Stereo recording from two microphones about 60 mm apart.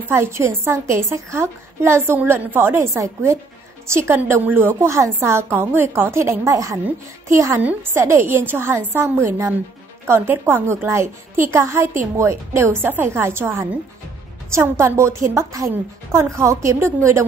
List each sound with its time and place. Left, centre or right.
0.1 s a woman's voice: right
2.9 s a woman's voice: right
3.9 s a woman's voice: right
6.4 s a woman's voice: right
12.8 s a woman's voice: right